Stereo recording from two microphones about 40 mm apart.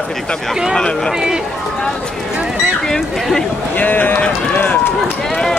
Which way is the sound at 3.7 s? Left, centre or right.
Left.